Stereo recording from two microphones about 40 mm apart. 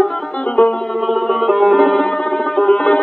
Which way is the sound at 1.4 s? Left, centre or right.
Centre.